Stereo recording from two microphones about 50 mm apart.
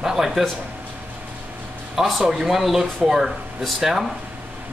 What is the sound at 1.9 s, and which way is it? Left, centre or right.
Speech, centre.